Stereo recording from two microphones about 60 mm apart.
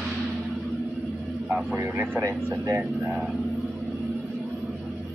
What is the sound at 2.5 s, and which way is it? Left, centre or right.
Speech, right.